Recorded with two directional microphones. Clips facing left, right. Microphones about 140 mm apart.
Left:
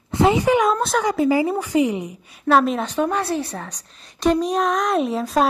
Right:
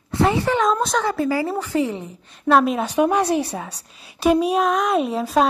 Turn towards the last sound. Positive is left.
turn(degrees=0)  # may be behind; listen again after turning